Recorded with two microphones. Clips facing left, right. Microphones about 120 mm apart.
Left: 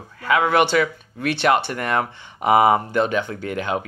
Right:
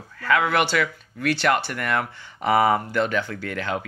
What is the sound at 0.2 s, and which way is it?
Speech, 20° left (ahead or behind).